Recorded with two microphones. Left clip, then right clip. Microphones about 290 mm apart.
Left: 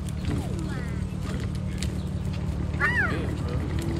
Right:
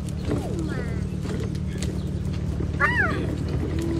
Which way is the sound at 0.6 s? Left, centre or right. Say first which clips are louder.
Right 4 dB; centre.